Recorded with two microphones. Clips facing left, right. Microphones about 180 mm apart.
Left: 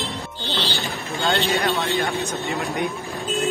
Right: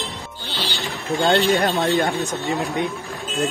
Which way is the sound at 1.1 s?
35° right (ahead or behind).